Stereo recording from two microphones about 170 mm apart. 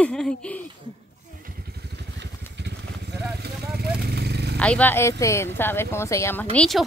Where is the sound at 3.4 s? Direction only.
70° right (ahead or behind).